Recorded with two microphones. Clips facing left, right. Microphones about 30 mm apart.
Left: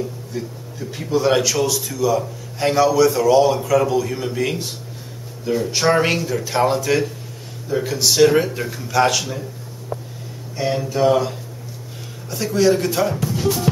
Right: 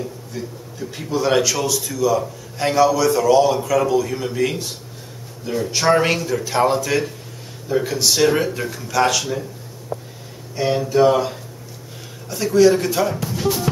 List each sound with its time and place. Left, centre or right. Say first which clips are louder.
0.0 s a man's voice: left 2 dB; centre
10.5 s a man's voice: right 3 dB; centre